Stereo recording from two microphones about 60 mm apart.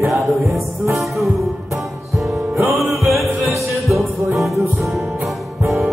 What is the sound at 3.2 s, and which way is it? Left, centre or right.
Music, right.